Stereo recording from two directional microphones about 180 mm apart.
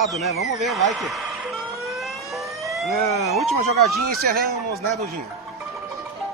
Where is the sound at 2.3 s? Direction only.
Centre (ahead or behind).